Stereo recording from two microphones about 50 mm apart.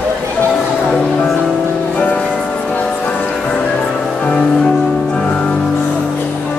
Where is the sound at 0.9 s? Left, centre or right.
Centre.